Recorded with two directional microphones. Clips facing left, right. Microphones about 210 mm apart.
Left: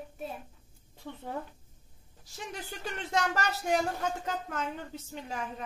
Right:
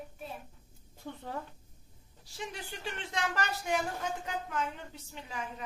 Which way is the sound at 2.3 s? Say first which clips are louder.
Left 1 dB; 45° left (ahead or behind).